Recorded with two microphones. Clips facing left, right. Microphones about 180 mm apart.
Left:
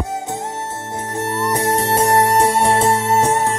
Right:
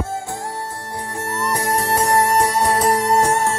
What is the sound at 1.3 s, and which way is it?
Music, 25° left (ahead or behind).